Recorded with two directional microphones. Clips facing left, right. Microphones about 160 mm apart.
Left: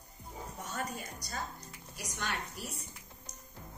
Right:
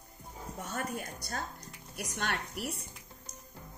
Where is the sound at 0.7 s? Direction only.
55° right (ahead or behind).